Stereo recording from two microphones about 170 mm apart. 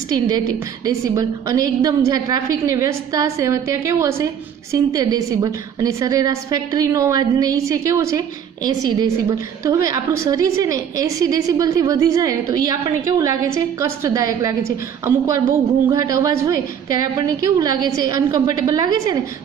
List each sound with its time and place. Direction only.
0.1 s a woman's voice: 20° right (ahead or behind)